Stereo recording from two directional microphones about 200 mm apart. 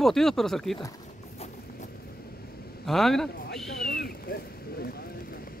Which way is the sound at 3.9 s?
50° left (ahead or behind).